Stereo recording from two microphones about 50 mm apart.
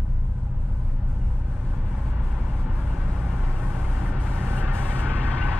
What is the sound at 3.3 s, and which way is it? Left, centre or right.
Vehicle, centre.